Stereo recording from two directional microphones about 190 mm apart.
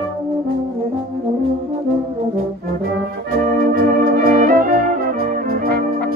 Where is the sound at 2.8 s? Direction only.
50° right (ahead or behind).